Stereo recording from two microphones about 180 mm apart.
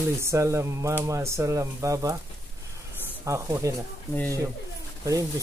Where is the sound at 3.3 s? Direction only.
15° right (ahead or behind).